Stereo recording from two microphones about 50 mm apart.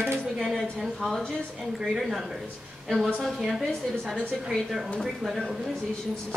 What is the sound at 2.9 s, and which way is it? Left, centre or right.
Speech, centre.